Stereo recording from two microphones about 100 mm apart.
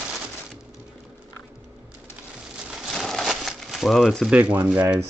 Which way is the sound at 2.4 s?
5° right (ahead or behind).